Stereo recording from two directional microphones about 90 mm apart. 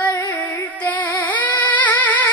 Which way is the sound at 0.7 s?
15° left (ahead or behind).